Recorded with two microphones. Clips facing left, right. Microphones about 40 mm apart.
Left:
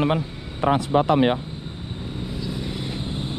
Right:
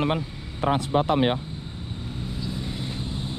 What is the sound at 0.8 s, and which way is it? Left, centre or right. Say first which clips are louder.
Speech: left 4 dB; left.